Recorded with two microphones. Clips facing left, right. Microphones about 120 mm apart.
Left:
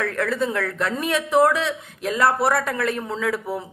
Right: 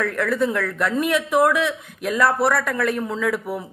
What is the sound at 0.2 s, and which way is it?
Speech, 25° left (ahead or behind).